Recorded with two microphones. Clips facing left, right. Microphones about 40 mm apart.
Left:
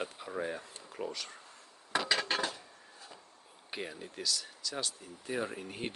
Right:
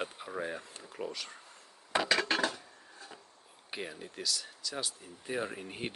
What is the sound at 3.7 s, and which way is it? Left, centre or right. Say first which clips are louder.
Speech: even; centre.